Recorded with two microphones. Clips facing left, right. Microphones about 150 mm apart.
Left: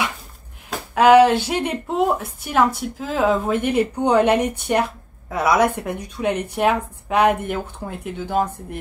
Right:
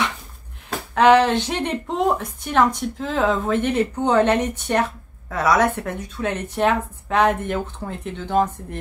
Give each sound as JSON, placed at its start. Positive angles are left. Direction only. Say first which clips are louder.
{"t": 0.7, "sound": "speech", "louder": "left 1 dB", "side_deg": 10}